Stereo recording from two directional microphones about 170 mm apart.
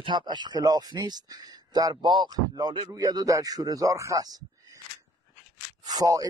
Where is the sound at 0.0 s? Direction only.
25° right (ahead or behind).